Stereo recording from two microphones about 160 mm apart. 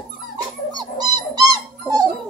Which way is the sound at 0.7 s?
25° right (ahead or behind).